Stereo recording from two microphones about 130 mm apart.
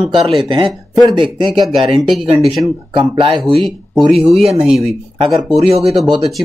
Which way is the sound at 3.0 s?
40° right (ahead or behind).